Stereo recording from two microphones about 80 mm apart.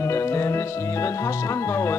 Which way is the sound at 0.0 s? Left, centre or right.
Left.